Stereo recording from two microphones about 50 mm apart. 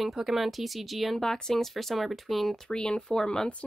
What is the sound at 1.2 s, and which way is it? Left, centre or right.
Speech, centre.